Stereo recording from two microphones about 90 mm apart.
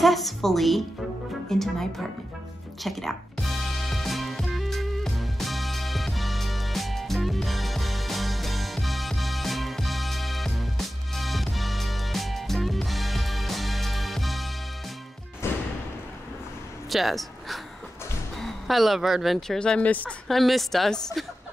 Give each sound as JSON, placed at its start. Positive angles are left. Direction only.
{"t": 0.0, "sound": "a woman's voice", "side_deg": 0}
{"t": 2.8, "sound": "music", "side_deg": 0}
{"t": 15.4, "sound": "music", "side_deg": 30}
{"t": 16.9, "sound": "a sound", "side_deg": 0}
{"t": 18.3, "sound": "speech", "side_deg": 0}
{"t": 20.2, "sound": "a woman's voice", "side_deg": 0}